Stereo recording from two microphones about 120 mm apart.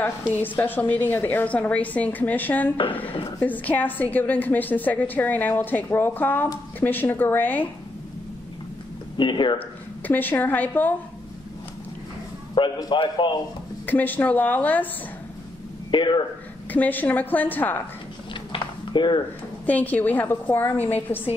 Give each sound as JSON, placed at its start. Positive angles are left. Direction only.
{"t": 0.4, "sound": "a woman's voice", "side_deg": 15}
{"t": 9.1, "sound": "speech", "side_deg": 40}
{"t": 9.6, "sound": "a woman's voice", "side_deg": 15}
{"t": 12.5, "sound": "a man's voice", "side_deg": 35}
{"t": 13.8, "sound": "a woman's voice", "side_deg": 15}
{"t": 15.9, "sound": "a man's voice", "side_deg": 40}
{"t": 16.7, "sound": "a woman's voice", "side_deg": 15}
{"t": 18.3, "sound": "a sound", "side_deg": 40}
{"t": 19.6, "sound": "a woman's voice", "side_deg": 15}